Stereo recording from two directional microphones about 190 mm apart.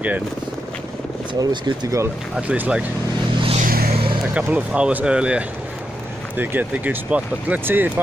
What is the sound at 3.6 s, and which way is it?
Vehicle, 50° right (ahead or behind).